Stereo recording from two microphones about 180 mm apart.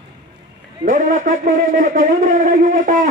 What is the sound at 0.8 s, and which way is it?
A man's voice, 45° right (ahead or behind).